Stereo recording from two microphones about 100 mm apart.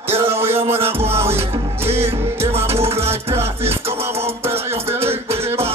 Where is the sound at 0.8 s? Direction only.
70° right (ahead or behind).